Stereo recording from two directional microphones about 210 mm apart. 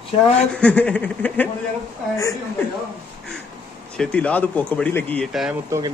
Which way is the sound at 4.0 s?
5° left (ahead or behind).